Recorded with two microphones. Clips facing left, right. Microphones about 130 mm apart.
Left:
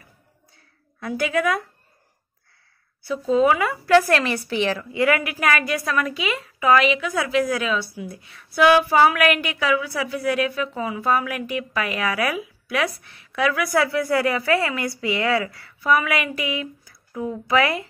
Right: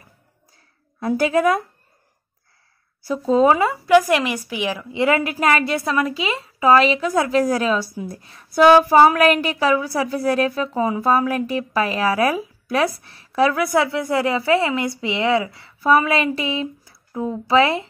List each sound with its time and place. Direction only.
0.9 s a woman's voice: 35° right (ahead or behind)
3.0 s speech: 40° right (ahead or behind); by 4.8 s 10° right (ahead or behind)
4.9 s a woman's voice: 25° right (ahead or behind)